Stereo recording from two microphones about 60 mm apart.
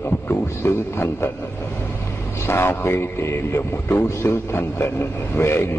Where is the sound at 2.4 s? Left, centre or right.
Left.